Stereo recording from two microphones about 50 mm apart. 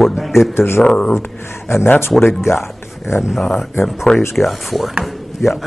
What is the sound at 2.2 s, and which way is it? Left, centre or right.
Speech, left.